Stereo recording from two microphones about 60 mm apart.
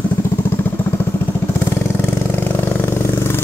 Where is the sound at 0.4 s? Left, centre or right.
Left.